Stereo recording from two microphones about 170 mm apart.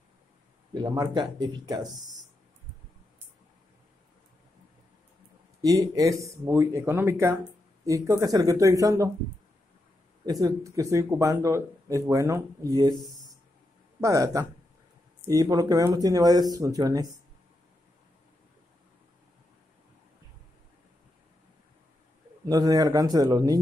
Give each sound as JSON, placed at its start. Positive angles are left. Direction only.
{"t": 0.7, "sound": "speech", "side_deg": -25}
{"t": 5.6, "sound": "speech", "side_deg": -20}
{"t": 10.4, "sound": "speech", "side_deg": -20}
{"t": 14.0, "sound": "speech", "side_deg": -20}
{"t": 22.5, "sound": "speech", "side_deg": -20}